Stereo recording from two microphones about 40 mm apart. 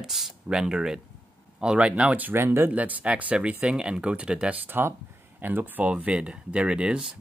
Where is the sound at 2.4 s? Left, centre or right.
Right.